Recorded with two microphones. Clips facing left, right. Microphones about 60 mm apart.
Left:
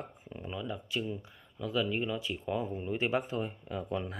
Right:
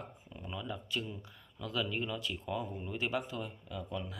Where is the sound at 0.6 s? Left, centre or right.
Centre.